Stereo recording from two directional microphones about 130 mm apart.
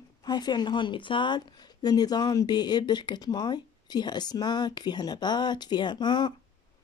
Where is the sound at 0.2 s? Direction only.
35° left (ahead or behind).